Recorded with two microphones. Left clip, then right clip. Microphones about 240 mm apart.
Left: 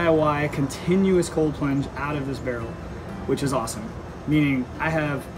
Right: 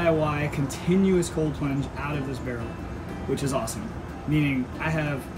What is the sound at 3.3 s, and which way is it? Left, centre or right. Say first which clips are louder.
Speech: left 3 dB; centre.